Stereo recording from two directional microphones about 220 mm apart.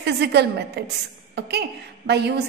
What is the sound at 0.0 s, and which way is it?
A woman's voice, 50° right (ahead or behind).